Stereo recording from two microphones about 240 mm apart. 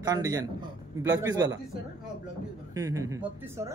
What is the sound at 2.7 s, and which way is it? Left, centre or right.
Speech, centre.